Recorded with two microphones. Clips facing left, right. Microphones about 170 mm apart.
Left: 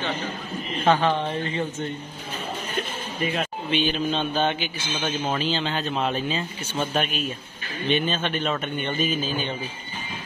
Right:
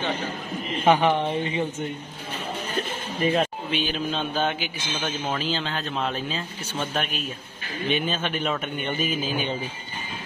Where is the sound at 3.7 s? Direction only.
5° right (ahead or behind).